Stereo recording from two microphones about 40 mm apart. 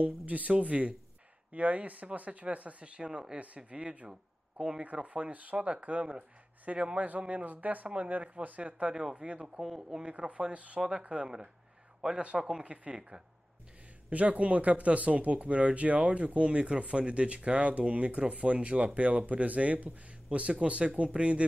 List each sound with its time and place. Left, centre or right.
0.3 s speech: right
9.6 s speech: centre
10.0 s speech: right
14.1 s speech: right